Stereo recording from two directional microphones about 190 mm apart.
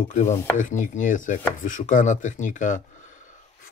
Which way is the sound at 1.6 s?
45° left (ahead or behind).